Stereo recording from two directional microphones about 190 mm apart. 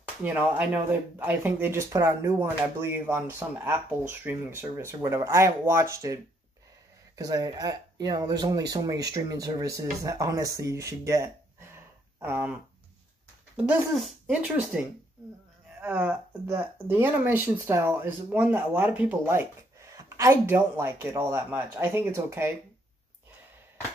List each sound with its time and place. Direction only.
0.2 s speech: 10° right (ahead or behind)
7.2 s speech: 20° right (ahead or behind)
14.0 s speech: 5° right (ahead or behind)